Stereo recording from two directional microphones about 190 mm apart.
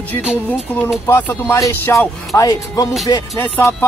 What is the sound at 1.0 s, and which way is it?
Music, 15° left (ahead or behind).